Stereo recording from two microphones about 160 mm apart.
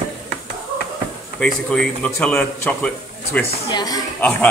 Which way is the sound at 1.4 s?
5° left (ahead or behind).